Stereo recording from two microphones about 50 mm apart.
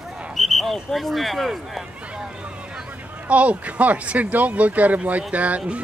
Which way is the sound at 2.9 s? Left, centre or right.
Right.